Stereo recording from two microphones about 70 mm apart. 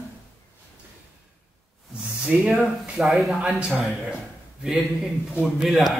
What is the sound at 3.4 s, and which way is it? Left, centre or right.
Speech, centre.